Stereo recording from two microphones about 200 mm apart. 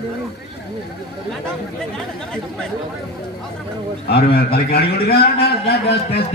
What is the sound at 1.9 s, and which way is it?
Speech, centre (ahead or behind).